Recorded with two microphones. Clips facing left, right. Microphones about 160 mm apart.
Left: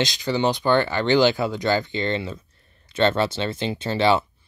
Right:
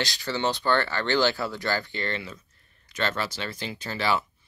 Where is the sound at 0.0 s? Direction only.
20° left (ahead or behind).